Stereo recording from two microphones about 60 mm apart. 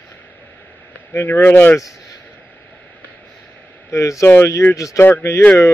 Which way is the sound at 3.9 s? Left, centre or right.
Left.